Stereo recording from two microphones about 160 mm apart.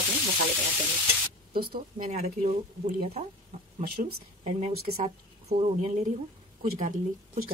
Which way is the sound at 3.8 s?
75° right (ahead or behind).